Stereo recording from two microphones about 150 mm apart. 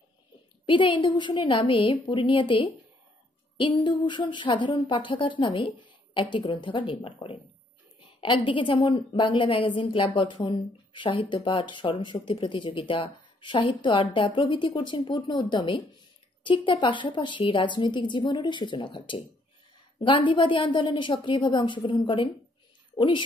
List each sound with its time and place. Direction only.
0.7 s a woman's voice: 35° left (ahead or behind)